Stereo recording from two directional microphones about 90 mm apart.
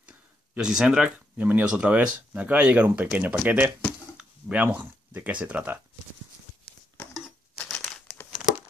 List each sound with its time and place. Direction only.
0.0 s a sound: 10° right (ahead or behind)
1.1 s speech: 20° right (ahead or behind)
7.6 s crumpling: 5° left (ahead or behind)